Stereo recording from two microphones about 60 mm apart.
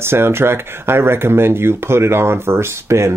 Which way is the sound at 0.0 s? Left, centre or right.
Right.